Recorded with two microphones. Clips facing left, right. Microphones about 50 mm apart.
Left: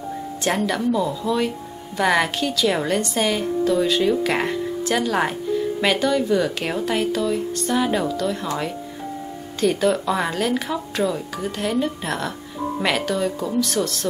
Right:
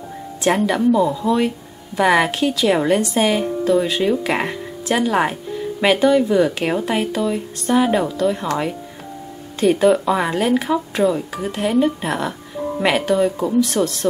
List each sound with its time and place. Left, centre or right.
0.4 s a woman's voice: centre
9.6 s a woman's voice: centre
13.5 s speech: centre